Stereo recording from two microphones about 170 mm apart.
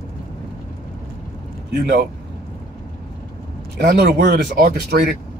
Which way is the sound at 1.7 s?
70° right (ahead or behind).